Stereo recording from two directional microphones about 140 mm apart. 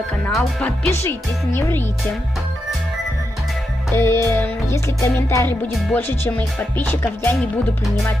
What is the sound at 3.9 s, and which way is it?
Music, 15° left (ahead or behind).